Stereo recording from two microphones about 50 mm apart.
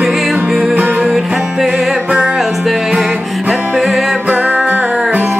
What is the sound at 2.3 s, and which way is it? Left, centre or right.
Music, centre.